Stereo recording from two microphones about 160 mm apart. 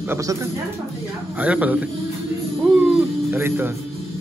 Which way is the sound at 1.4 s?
10° right (ahead or behind).